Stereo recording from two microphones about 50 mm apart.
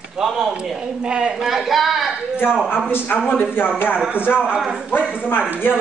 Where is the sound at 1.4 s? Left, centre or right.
Centre.